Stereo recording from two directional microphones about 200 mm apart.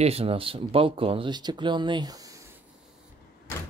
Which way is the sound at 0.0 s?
30° right (ahead or behind).